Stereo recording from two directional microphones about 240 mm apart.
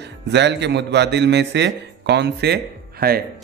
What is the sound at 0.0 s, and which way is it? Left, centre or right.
A man's voice, right.